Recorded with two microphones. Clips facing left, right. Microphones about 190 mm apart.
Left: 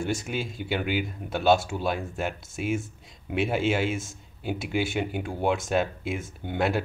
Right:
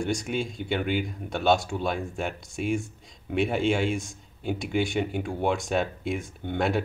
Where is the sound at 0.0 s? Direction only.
5° left (ahead or behind).